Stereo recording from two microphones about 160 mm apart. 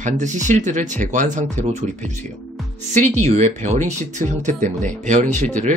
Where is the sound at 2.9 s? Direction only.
45° right (ahead or behind).